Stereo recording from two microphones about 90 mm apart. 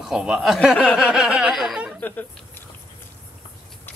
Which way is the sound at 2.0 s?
20° left (ahead or behind).